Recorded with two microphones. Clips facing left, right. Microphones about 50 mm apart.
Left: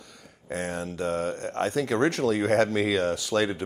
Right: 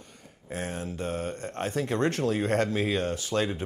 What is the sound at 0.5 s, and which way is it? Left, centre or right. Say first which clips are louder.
Speech: left 3 dB; left.